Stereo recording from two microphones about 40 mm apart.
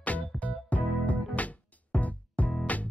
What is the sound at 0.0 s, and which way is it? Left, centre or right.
Music, left.